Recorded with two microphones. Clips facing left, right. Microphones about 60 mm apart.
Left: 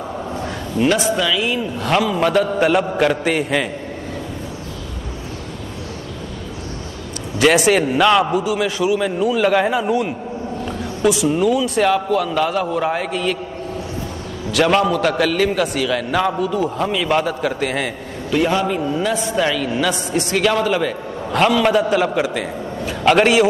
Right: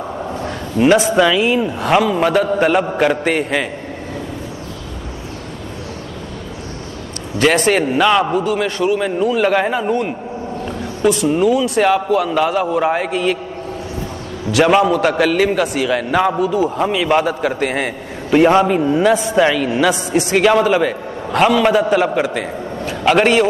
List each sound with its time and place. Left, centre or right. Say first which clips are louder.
0.7 s speech: right 5 dB; right
1.8 s a man's voice: right 1 dB; centre
7.5 s a man's voice: even; centre
11.0 s a man's voice: right 2 dB; centre
14.5 s a man's voice: right 3 dB; centre; by 18.8 s right
19.0 s a man's voice: right 6 dB; centre